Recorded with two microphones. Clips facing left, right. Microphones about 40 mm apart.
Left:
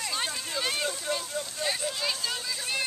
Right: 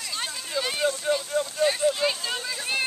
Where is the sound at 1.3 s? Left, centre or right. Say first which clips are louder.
Right 9 dB; right.